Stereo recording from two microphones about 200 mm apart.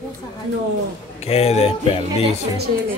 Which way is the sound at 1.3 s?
30° left (ahead or behind).